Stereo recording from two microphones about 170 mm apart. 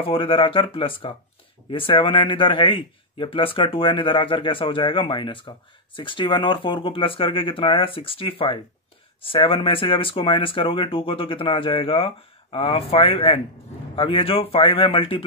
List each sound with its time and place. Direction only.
0.0 s speech: 30° left (ahead or behind)